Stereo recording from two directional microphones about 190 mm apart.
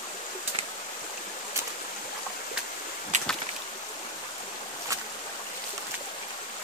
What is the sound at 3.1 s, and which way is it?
Boat, 40° right (ahead or behind).